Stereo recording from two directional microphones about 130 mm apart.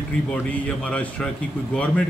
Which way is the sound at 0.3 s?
10° left (ahead or behind).